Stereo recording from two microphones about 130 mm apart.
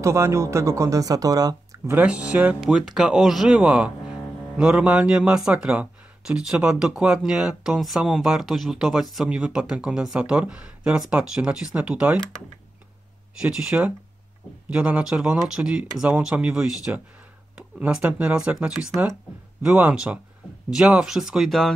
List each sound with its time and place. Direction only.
0.0 s speech: 20° right (ahead or behind)
2.0 s speech: 10° right (ahead or behind)
13.4 s speech: 5° right (ahead or behind)